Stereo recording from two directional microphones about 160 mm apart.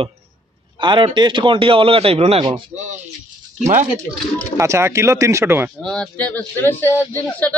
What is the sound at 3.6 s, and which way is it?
Speech, 45° right (ahead or behind).